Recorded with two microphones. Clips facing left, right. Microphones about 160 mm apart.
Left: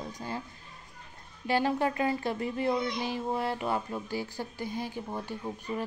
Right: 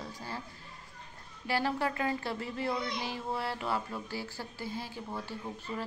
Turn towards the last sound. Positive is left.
turn(degrees=15)  # may be behind; listen again after turning